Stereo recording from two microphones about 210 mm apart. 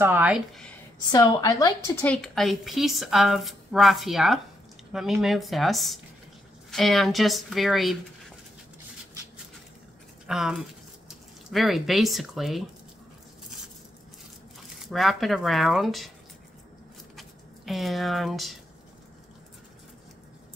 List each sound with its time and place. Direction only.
0.0 s a woman's voice: 10° right (ahead or behind)
1.1 s a woman's voice: 20° left (ahead or behind)
2.0 s a woman's voice: centre (ahead or behind)
10.2 s a woman's voice: 5° right (ahead or behind)
14.9 s a woman's voice: centre (ahead or behind)
17.2 s speech: centre (ahead or behind)